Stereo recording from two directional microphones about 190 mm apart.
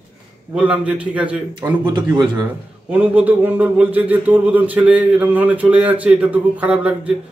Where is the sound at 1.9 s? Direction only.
25° right (ahead or behind).